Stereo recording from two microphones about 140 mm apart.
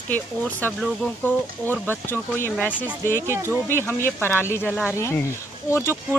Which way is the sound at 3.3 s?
20° right (ahead or behind).